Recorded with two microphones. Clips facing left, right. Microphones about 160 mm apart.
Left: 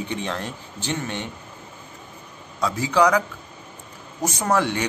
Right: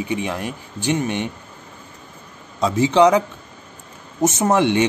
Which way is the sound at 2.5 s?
25° right (ahead or behind).